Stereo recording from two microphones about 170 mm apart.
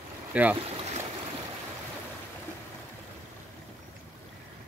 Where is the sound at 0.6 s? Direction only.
40° right (ahead or behind).